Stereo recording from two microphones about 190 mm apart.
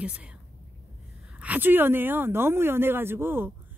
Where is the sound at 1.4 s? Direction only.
10° right (ahead or behind).